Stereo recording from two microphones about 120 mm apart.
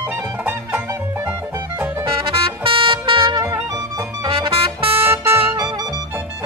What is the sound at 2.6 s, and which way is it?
Music, 45° right (ahead or behind).